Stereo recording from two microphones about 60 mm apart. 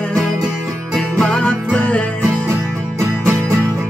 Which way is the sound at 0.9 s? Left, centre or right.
Centre.